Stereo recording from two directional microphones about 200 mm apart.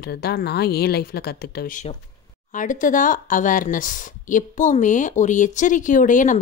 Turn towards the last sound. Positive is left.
turn(degrees=40)  # may be behind; listen again after turning